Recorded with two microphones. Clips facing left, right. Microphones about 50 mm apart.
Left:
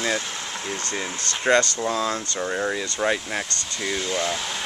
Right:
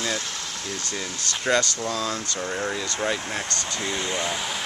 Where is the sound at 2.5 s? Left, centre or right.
Centre.